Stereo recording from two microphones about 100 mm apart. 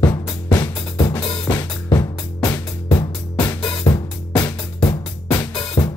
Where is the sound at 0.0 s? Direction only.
45° left (ahead or behind).